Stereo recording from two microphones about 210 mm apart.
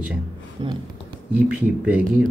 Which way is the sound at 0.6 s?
20° right (ahead or behind).